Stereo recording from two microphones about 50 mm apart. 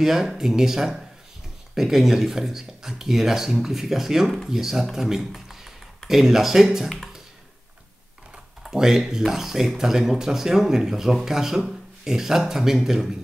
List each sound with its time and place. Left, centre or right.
0.0 s speech: centre
8.6 s speech: centre